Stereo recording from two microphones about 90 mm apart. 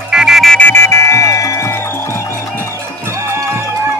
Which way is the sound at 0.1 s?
5° right (ahead or behind).